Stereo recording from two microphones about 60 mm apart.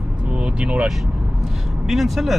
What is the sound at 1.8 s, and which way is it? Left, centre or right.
Speech, centre.